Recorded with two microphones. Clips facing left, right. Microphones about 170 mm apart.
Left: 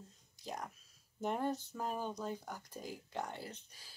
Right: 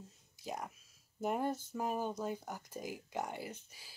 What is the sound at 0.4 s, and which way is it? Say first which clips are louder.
Whispering: right 2 dB; 10° right (ahead or behind).